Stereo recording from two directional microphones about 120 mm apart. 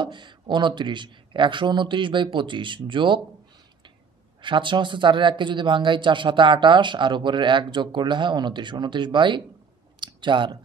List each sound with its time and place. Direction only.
0.0 s speech: 40° right (ahead or behind)
4.4 s speech: 40° right (ahead or behind)
9.9 s clicking: 40° right (ahead or behind)